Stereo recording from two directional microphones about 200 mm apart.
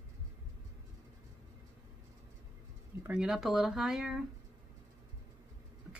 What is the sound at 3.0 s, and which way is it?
Speech, 5° right (ahead or behind).